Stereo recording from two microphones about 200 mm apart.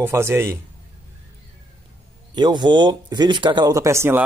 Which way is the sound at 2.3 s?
20° right (ahead or behind).